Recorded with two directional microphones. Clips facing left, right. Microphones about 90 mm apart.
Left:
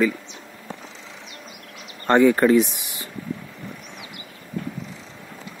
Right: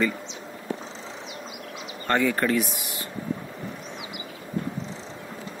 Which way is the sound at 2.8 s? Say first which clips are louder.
Right 2 dB; 20° left (ahead or behind).